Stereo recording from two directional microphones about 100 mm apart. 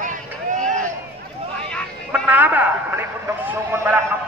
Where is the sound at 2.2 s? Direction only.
15° right (ahead or behind).